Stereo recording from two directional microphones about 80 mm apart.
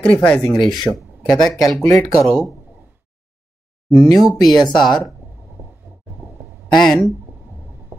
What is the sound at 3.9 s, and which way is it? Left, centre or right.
Speech, centre.